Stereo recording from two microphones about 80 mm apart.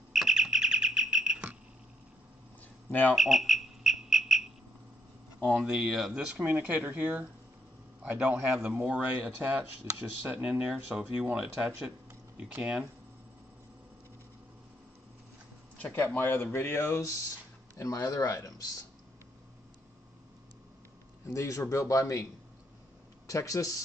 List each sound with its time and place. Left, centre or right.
0.1 s bird: centre
2.9 s speech: left
3.2 s mouse: centre
5.4 s speech: centre
6.4 s speech: right
15.8 s speech: left
17.7 s speech: left
21.3 s a man's voice: left